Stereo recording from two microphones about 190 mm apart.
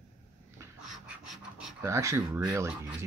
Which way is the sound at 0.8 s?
Centre (ahead or behind).